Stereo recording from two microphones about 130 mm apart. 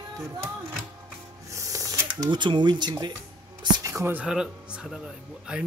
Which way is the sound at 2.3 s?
35° right (ahead or behind).